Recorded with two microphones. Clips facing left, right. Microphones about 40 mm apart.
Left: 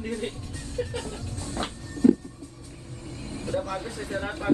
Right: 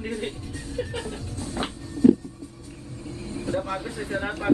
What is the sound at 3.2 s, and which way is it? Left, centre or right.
Vehicle, centre.